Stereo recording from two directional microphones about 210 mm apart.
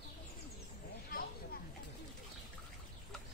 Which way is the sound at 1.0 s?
45° left (ahead or behind).